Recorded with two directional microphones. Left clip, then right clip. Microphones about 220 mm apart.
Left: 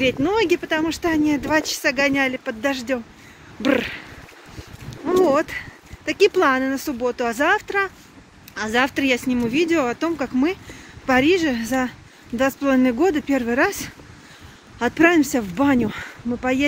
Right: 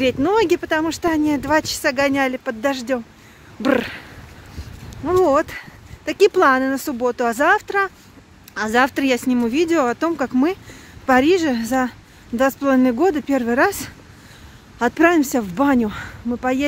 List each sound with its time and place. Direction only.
0.0 s speech: 30° right (ahead or behind)
5.0 s speech: 20° right (ahead or behind)